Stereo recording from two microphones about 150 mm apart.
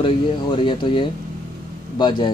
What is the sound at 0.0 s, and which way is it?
Speech, 30° left (ahead or behind).